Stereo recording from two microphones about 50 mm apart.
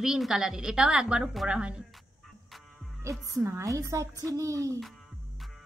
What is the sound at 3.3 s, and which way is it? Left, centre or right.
A woman's voice, right.